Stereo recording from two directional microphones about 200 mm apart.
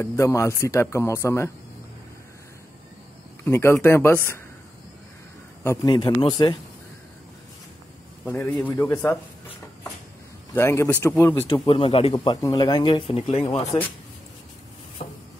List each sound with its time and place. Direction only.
0.0 s speech: 15° left (ahead or behind)
3.4 s speech: 10° left (ahead or behind)
5.6 s speech: 15° left (ahead or behind)
8.3 s speech: 10° left (ahead or behind)
10.5 s speech: 10° left (ahead or behind)
11.4 s speech: 25° left (ahead or behind)
15.0 s a sound: 30° left (ahead or behind)